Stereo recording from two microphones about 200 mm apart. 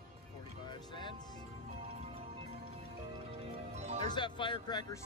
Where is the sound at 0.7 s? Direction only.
25° left (ahead or behind).